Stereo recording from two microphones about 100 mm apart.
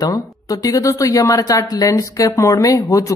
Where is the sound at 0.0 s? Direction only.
40° left (ahead or behind).